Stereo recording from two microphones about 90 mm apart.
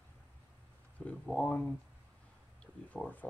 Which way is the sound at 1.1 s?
5° left (ahead or behind).